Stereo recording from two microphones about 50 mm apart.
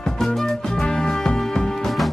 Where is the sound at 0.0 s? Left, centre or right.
Centre.